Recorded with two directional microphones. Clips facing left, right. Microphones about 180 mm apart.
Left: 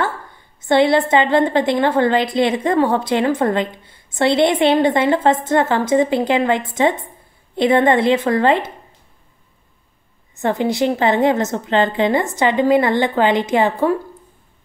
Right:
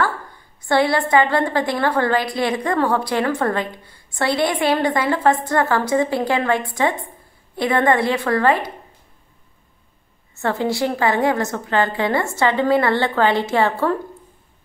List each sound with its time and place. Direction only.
0.6 s a woman's voice: 20° left (ahead or behind)
10.3 s a woman's voice: 15° left (ahead or behind)